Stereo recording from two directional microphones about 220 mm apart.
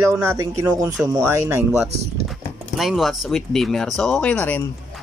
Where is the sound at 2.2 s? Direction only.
Centre (ahead or behind).